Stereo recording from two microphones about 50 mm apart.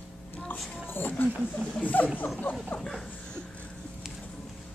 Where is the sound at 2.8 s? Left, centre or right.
Centre.